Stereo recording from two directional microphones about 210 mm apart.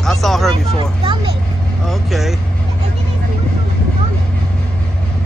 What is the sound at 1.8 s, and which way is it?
Vehicle, centre (ahead or behind).